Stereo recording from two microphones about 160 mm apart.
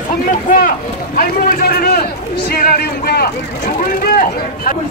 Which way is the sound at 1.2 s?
70° left (ahead or behind).